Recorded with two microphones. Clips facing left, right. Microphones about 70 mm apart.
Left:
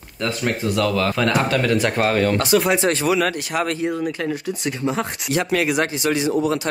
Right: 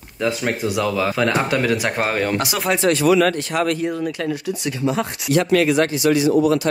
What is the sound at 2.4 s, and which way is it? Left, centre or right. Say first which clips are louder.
Speech: left 5 dB; centre.